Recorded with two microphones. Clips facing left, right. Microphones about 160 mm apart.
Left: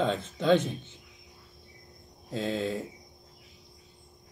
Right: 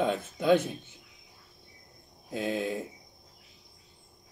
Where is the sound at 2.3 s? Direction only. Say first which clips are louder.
Even; 15° right (ahead or behind).